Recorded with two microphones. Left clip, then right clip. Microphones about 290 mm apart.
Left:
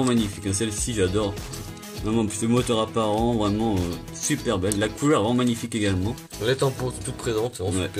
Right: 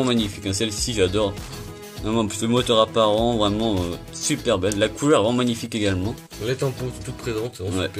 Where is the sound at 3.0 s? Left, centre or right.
Right.